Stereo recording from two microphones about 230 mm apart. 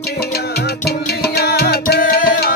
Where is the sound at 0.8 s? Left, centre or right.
Left.